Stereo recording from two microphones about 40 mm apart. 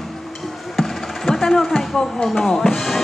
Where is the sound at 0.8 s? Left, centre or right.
Centre.